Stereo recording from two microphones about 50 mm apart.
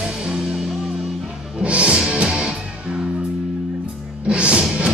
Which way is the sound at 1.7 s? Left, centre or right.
Right.